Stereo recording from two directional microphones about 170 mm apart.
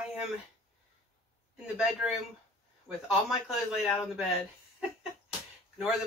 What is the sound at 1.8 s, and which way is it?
Speech, 5° right (ahead or behind).